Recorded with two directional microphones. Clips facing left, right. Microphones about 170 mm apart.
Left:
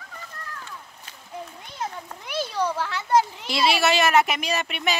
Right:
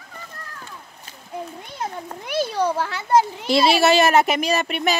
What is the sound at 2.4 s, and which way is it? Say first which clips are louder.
Speech: right 4 dB; 65° right (ahead or behind).